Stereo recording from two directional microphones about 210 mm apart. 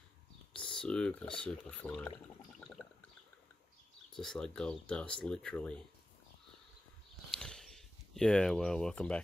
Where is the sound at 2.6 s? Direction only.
5° left (ahead or behind).